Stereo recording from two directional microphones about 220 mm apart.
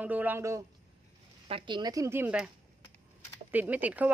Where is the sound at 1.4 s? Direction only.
20° right (ahead or behind); by 2.5 s 5° right (ahead or behind).